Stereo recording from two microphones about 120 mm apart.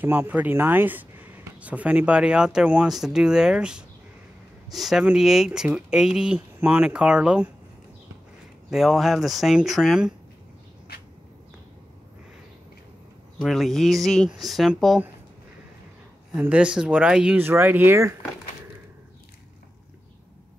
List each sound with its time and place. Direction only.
0.0 s speech: 15° right (ahead or behind)
8.6 s speech: 5° right (ahead or behind)
13.4 s speech: centre (ahead or behind)
16.3 s speech: 10° right (ahead or behind)